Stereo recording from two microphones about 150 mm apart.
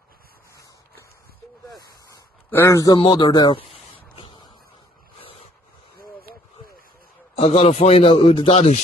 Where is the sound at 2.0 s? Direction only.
20° left (ahead or behind).